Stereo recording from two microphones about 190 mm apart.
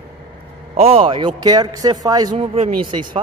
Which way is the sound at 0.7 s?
30° right (ahead or behind).